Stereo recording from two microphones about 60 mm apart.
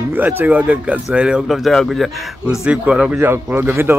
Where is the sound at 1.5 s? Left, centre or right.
Centre.